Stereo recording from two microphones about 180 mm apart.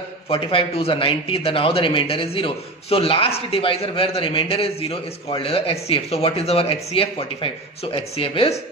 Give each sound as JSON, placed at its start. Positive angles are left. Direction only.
{"t": 0.3, "sound": "a man's voice", "side_deg": 30}